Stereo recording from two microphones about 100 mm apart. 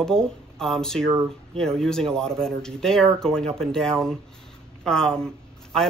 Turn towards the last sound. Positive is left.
turn(degrees=5)  # may be behind; listen again after turning